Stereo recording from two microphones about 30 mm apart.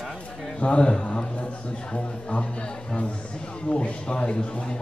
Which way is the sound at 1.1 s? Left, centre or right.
Left.